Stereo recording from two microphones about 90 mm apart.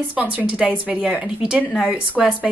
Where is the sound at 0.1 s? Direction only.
20° right (ahead or behind).